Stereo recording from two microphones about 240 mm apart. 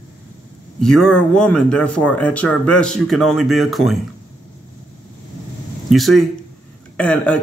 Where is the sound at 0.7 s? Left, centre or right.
Centre.